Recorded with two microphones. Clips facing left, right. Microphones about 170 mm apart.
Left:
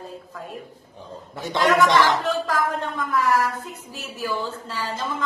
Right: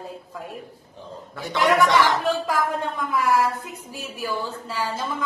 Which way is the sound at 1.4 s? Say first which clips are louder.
Left 1 dB; 20° left (ahead or behind).